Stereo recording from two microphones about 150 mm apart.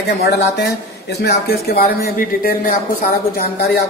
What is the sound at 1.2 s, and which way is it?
Speech, 90° left.